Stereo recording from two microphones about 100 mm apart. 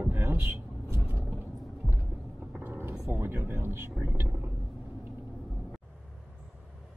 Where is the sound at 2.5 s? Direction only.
20° right (ahead or behind).